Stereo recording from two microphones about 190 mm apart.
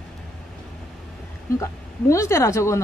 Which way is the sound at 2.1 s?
15° left (ahead or behind).